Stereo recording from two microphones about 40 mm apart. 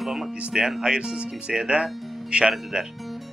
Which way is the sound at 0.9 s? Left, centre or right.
Right.